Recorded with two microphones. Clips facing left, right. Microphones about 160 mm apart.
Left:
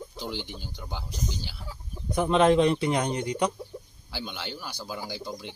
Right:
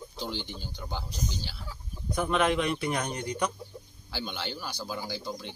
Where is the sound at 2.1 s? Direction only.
25° left (ahead or behind).